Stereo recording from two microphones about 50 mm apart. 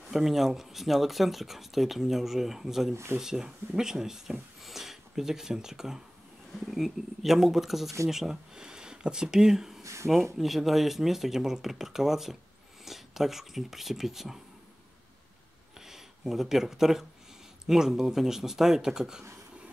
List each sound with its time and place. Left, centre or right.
0.1 s speech: centre
2.9 s speech: right
3.2 s speech: centre
15.8 s speech: centre